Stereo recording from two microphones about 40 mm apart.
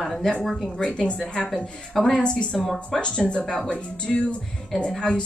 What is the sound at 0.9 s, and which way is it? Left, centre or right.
Speech, left.